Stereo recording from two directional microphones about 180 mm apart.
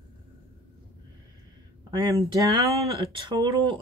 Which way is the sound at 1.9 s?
25° right (ahead or behind).